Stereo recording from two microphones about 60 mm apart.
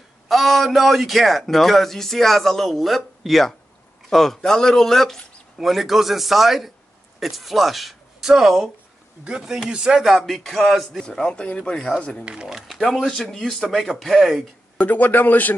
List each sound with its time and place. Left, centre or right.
0.3 s speech: centre
11.1 s speech: centre
12.4 s speech: centre
12.7 s speech: centre
14.8 s speech: left